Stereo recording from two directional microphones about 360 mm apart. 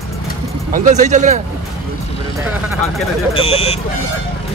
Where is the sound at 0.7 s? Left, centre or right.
Centre.